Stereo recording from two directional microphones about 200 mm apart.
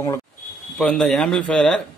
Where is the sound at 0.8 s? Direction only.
Centre (ahead or behind).